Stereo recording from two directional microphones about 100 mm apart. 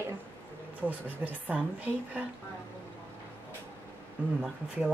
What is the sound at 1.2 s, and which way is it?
Speech, 15° right (ahead or behind).